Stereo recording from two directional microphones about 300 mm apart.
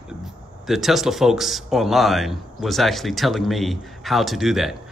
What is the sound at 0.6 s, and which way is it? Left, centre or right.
A man's voice, centre.